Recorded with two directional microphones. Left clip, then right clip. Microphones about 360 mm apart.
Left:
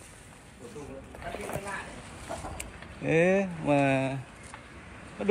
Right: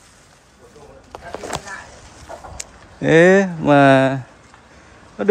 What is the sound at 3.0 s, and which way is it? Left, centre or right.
Speech, right.